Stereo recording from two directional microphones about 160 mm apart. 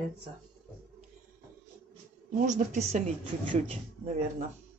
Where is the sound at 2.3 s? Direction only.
50° right (ahead or behind).